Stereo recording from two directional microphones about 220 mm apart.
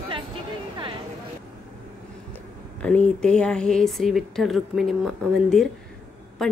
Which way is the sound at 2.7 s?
5° left (ahead or behind).